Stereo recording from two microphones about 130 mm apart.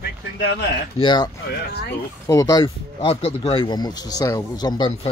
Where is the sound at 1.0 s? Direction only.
35° left (ahead or behind).